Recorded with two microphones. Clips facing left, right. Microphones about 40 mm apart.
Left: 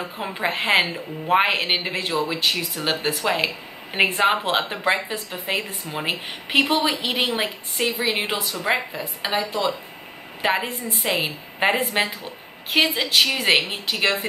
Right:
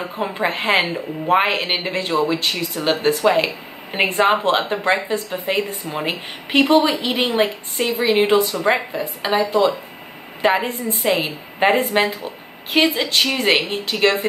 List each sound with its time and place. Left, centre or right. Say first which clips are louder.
0.2 s a woman's voice: right 3 dB; centre
0.7 s speech: right 2 dB; centre
1.3 s a woman's voice: right 2 dB; centre